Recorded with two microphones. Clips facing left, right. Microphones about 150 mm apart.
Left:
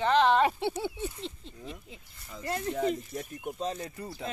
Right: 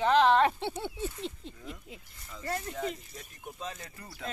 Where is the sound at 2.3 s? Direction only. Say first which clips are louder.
Left 3 dB; 20° left (ahead or behind).